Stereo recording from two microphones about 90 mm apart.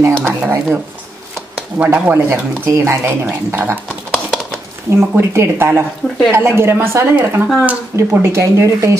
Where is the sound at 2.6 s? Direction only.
30° right (ahead or behind).